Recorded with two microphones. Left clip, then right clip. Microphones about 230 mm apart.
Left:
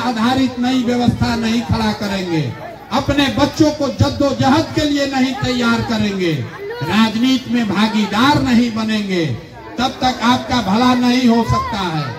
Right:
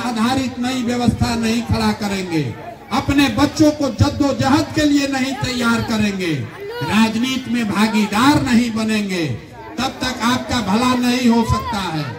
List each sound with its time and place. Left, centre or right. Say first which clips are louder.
0.2 s speech: left 1 dB; right
2.9 s speech: left 1 dB; right